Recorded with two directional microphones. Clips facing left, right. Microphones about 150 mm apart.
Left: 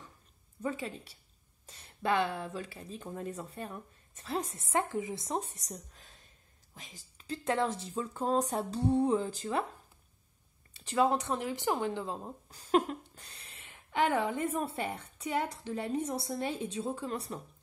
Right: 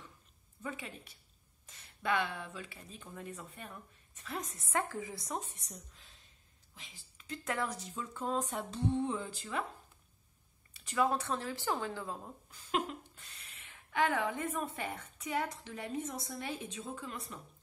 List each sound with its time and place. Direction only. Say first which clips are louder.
0.6 s speech: left 7 dB; 35° left (ahead or behind)
10.8 s speech: left 4 dB; 30° left (ahead or behind)
12.4 s a woman's voice: left 7 dB; 35° left (ahead or behind)